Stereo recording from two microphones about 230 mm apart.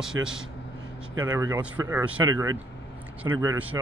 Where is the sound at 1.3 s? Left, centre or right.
Centre.